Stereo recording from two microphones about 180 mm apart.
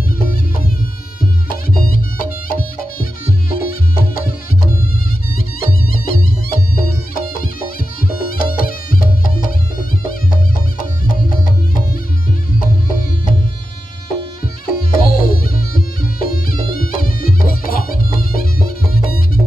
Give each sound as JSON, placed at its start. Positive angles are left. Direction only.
{"t": 0.2, "sound": "music", "side_deg": 55}
{"t": 1.8, "sound": "music", "side_deg": 50}
{"t": 5.3, "sound": "music", "side_deg": 55}
{"t": 14.4, "sound": "music", "side_deg": 55}